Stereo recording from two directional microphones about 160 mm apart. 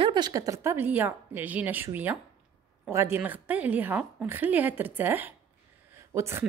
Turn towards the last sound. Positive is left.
turn(degrees=-15)  # may be behind; listen again after turning